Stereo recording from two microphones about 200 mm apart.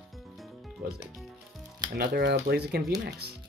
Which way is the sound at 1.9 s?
50° right (ahead or behind).